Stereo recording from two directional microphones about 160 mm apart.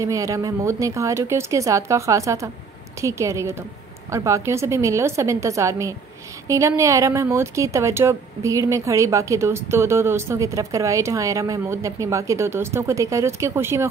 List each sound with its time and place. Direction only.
0.0 s a woman's voice: 20° right (ahead or behind)